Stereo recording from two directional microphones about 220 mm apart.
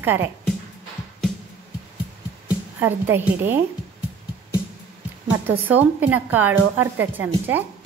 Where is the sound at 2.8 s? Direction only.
10° right (ahead or behind).